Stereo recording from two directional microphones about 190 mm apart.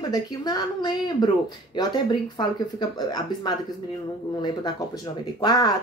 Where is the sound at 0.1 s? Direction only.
20° left (ahead or behind).